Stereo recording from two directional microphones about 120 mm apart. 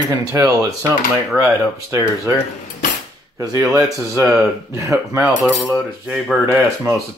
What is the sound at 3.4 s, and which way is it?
Speech, 30° right (ahead or behind).